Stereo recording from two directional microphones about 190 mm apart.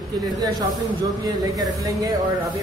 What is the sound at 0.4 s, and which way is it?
Speech, 20° right (ahead or behind).